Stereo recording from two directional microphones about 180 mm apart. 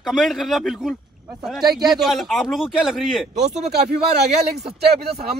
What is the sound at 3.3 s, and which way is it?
Speech, 40° right (ahead or behind).